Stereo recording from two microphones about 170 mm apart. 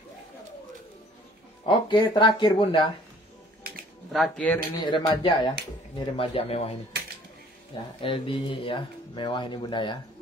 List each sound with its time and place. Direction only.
1.7 s speech: 30° left (ahead or behind)
4.1 s speech: 5° left (ahead or behind)
4.7 s speech: 25° left (ahead or behind)
8.0 s speech: 30° left (ahead or behind)